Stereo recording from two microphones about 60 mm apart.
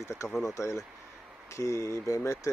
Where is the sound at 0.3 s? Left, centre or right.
Centre.